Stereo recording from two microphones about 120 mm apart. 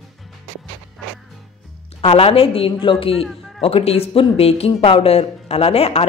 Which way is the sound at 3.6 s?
55° left (ahead or behind).